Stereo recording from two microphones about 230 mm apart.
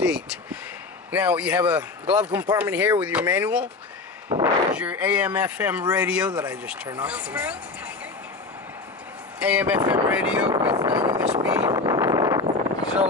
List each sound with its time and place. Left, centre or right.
0.0 s a sound: centre
1.1 s speech: centre
9.4 s speech: centre
10.5 s speech: centre
10.9 s speech: centre
11.4 s a sound: centre